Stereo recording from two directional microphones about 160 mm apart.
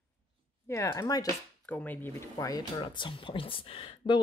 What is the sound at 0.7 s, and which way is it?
Speech, 20° left (ahead or behind).